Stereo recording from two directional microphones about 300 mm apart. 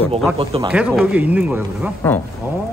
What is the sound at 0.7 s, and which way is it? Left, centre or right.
Speech, centre.